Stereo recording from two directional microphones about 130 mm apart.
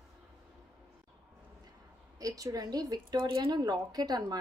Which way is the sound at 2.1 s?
30° right (ahead or behind).